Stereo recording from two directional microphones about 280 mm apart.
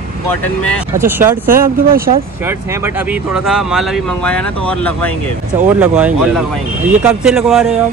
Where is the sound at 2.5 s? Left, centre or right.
Centre.